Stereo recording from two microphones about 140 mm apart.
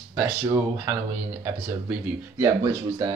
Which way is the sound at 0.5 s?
15° right (ahead or behind).